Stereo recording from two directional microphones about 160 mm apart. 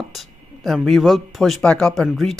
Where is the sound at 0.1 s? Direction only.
Centre (ahead or behind).